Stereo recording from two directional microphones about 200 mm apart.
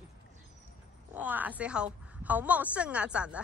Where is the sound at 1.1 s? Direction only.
10° right (ahead or behind).